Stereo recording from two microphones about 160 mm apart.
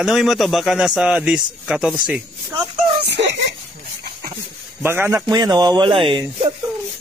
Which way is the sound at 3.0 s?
90° right.